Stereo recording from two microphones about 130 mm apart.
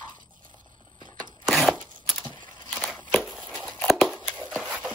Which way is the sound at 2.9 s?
10° left (ahead or behind).